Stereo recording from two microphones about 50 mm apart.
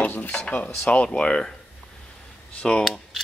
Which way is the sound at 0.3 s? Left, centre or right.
Centre.